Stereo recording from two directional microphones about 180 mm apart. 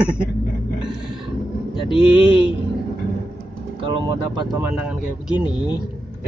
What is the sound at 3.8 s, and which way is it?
Speech, 25° right (ahead or behind).